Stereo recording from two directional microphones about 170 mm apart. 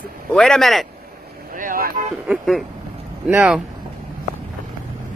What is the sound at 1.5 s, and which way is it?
Speech, 55° right (ahead or behind).